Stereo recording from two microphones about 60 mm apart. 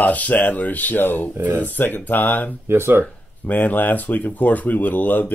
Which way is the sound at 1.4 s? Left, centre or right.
Right.